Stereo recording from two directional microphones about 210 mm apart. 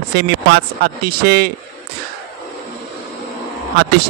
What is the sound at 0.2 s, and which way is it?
Speech, 55° right (ahead or behind).